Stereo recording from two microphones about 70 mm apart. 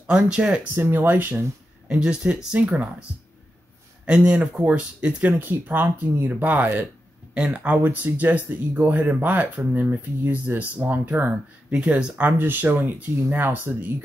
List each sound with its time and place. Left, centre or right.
0.0 s speech: centre
0.7 s speech: right
1.9 s speech: centre
5.3 s speech: right